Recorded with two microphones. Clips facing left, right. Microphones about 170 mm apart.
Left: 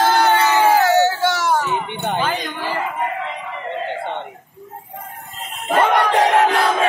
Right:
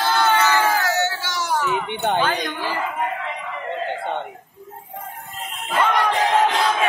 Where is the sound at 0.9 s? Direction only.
35° left (ahead or behind).